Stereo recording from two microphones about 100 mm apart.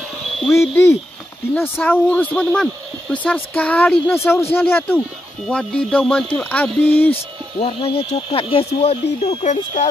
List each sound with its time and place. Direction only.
0.6 s speech: 25° left (ahead or behind)
7.6 s speech: 70° left (ahead or behind); by 9.8 s 85° left